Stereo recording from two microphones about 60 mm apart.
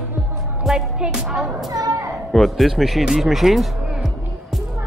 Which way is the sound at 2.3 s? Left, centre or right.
Centre.